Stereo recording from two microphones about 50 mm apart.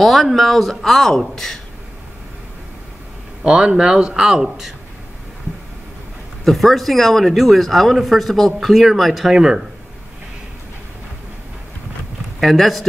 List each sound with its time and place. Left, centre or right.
0.0 s a man's voice: centre
3.4 s a man's voice: centre
6.4 s speech: centre
12.4 s speech: centre